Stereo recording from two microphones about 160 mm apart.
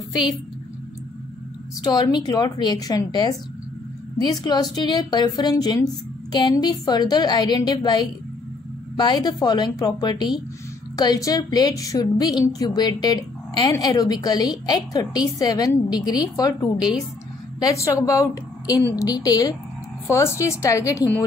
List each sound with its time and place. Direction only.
1.8 s a woman's voice: 25° left (ahead or behind)